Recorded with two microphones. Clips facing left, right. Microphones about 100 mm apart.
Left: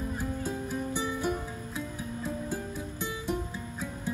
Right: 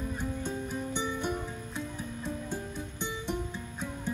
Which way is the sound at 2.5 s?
5° left (ahead or behind).